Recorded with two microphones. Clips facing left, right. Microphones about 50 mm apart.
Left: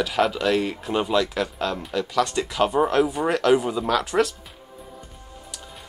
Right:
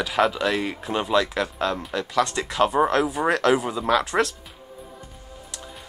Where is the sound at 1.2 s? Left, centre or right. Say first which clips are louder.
Right 1 dB; right.